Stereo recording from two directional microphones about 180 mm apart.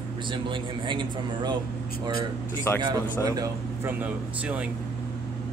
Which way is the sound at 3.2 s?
20° right (ahead or behind).